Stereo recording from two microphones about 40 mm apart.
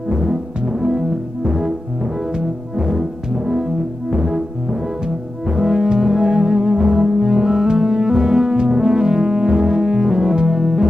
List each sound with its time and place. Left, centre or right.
0.1 s music: centre